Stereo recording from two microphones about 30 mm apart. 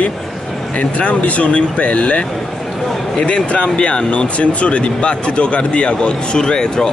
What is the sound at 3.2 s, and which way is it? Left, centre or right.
Speech, left.